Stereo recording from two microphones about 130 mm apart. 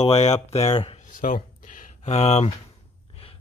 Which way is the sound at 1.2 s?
85° left.